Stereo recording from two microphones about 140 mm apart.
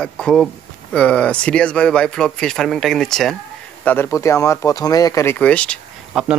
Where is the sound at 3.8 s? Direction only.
15° left (ahead or behind).